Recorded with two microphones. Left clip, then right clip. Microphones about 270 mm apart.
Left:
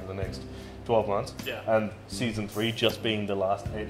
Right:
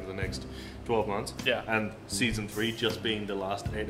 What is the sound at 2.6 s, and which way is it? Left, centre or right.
Speech, left.